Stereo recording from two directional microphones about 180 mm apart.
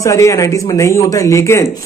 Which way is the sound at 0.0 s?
15° left (ahead or behind).